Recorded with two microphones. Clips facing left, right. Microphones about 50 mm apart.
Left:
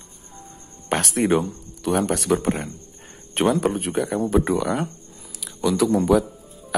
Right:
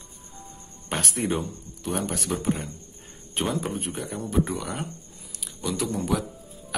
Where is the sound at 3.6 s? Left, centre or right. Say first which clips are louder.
Left 9 dB; left.